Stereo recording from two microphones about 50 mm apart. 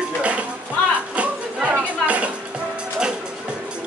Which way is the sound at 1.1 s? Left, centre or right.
Right.